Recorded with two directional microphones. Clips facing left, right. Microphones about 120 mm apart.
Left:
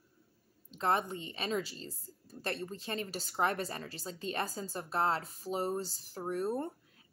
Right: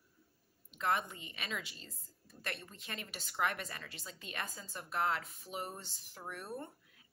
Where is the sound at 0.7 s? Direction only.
35° left (ahead or behind).